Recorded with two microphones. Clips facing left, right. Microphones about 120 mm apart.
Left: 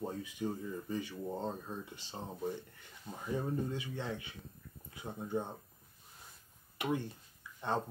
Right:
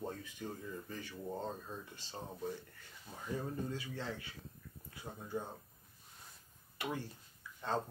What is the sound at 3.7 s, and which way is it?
Speech, 20° left (ahead or behind).